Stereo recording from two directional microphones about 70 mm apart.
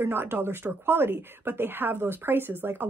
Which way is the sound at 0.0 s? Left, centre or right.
Right.